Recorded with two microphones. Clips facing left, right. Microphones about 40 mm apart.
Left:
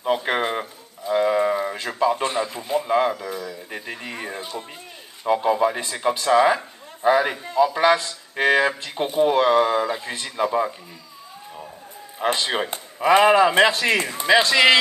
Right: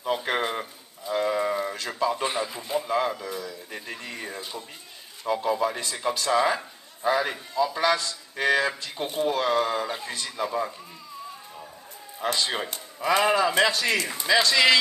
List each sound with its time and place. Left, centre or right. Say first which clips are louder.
0.0 s a sound: left 4 dB; centre
2.2 s a man's voice: left 4 dB; centre
2.8 s speech: left 6 dB; centre
12.2 s speech: left 5 dB; left